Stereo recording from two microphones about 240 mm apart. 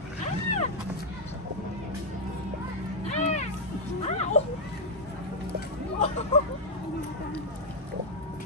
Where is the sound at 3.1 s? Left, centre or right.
Left.